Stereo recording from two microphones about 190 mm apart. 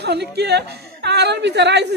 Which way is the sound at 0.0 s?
60° right (ahead or behind).